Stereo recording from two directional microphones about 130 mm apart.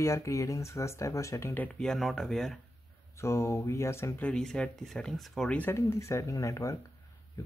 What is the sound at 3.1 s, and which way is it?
Speech, 20° left (ahead or behind).